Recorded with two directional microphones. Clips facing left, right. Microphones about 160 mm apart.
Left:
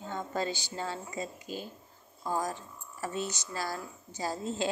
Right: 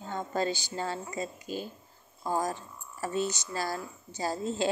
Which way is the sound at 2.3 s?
35° right (ahead or behind).